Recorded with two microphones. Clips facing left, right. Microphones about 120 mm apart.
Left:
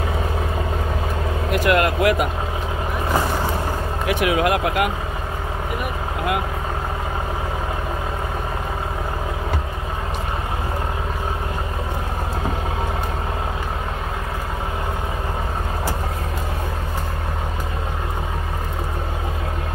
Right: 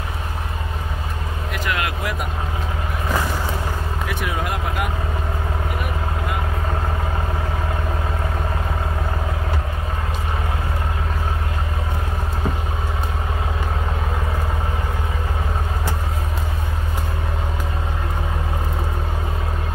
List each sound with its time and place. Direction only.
1.5 s speech: 65° left (ahead or behind)
4.1 s speech: 90° left